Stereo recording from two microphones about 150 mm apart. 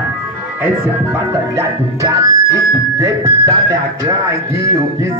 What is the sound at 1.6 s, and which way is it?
Music, 20° right (ahead or behind).